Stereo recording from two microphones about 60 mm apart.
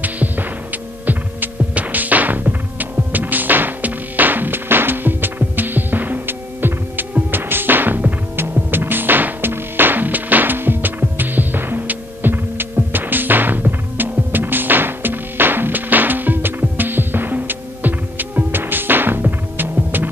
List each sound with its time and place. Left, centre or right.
0.0 s music: right
1.0 s hum: right
7.2 s music: right